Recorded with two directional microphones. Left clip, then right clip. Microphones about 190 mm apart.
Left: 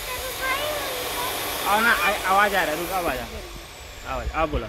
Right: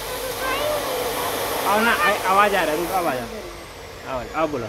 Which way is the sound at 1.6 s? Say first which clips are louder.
Right 1 dB; 30° left (ahead or behind).